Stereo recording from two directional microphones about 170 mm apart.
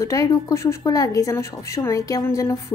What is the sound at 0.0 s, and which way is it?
A woman's voice, 20° left (ahead or behind).